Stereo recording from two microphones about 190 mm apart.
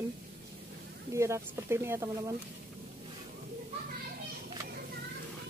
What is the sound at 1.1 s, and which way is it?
Speech, 15° right (ahead or behind).